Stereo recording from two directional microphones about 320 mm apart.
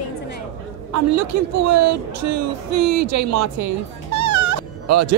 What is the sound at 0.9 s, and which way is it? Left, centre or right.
Speech, right.